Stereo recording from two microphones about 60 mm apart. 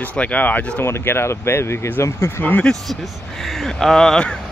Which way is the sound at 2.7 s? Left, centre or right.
Centre.